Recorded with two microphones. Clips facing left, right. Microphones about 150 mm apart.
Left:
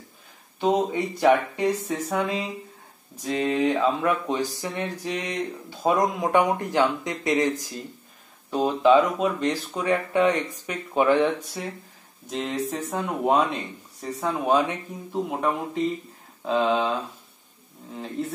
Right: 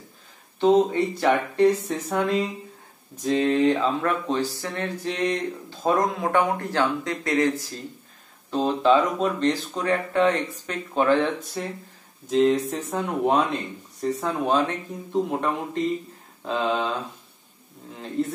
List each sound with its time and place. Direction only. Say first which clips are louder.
0.6 s speech: right 4 dB; 10° left (ahead or behind)